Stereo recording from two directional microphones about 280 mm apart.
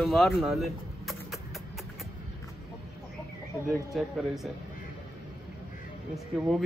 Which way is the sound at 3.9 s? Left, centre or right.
Centre.